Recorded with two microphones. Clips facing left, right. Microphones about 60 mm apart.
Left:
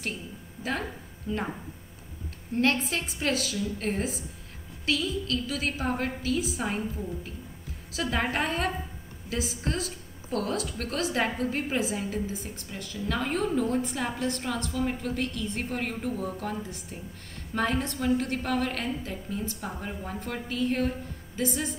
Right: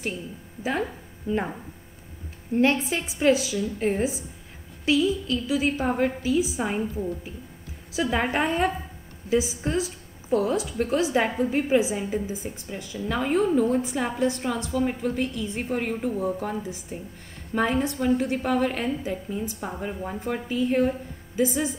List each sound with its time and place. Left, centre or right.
1.3 s a woman's voice: centre
2.5 s a woman's voice: centre